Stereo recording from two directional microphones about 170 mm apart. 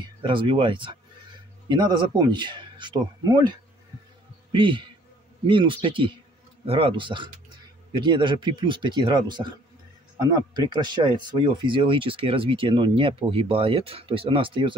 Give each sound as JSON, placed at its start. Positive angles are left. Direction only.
{"t": 0.2, "sound": "a man's voice", "side_deg": -30}